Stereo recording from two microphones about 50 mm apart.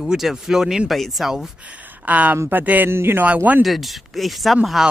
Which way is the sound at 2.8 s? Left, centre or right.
Right.